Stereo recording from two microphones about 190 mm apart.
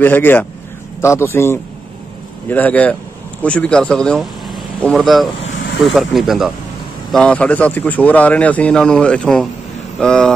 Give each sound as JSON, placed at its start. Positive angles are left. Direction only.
{"t": 0.0, "sound": "a man's voice", "side_deg": 10}